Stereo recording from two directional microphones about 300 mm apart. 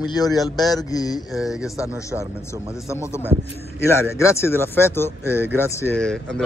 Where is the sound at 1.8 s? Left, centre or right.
Centre.